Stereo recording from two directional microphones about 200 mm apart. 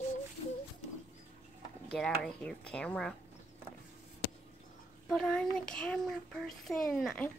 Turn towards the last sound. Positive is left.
turn(degrees=5)  # may be behind; listen again after turning